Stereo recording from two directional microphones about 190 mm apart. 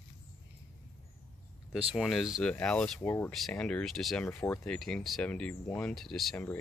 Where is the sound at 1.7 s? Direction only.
5° right (ahead or behind).